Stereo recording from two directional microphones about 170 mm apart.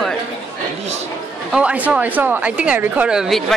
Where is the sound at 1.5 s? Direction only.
10° right (ahead or behind).